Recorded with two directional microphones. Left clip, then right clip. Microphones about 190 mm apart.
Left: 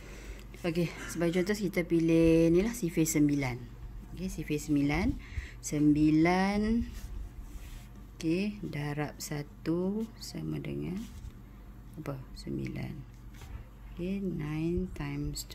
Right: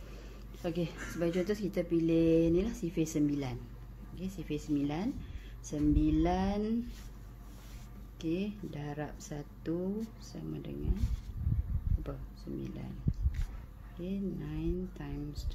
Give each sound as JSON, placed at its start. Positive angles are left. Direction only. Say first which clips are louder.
{"t": 0.6, "sound": "speech", "louder": "left 3 dB", "side_deg": 45}
{"t": 8.2, "sound": "speech", "louder": "left 4 dB", "side_deg": 50}
{"t": 12.0, "sound": "speech", "louder": "left 7 dB", "side_deg": 50}
{"t": 14.0, "sound": "speech", "louder": "left 3 dB", "side_deg": 50}